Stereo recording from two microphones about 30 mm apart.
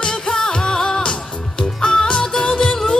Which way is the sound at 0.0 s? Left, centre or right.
Centre.